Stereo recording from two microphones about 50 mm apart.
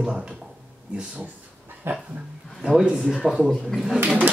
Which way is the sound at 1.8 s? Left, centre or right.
Right.